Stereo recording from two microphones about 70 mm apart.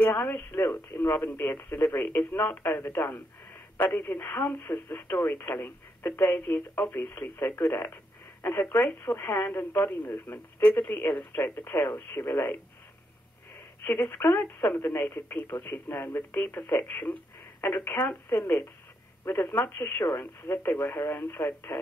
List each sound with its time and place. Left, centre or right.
0.1 s speech: left
13.8 s speech: left